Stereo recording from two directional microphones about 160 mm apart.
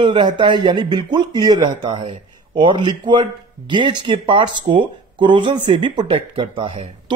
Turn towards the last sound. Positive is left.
turn(degrees=-30)  # may be behind; listen again after turning